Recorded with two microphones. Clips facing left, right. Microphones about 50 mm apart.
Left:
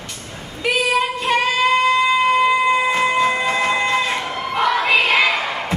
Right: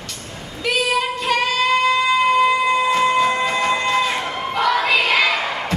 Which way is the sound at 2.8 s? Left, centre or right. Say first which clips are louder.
Right 1 dB; left.